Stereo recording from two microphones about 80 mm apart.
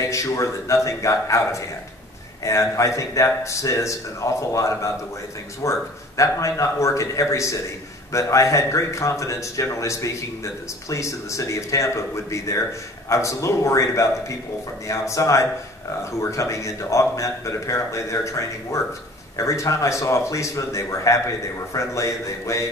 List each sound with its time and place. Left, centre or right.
0.0 s speech: left